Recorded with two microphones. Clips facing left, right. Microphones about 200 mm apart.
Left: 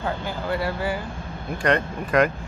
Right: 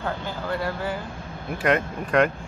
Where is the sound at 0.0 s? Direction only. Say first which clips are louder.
Left 2 dB; 10° left (ahead or behind).